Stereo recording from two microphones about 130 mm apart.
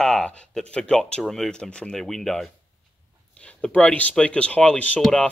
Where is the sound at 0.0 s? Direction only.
5° left (ahead or behind).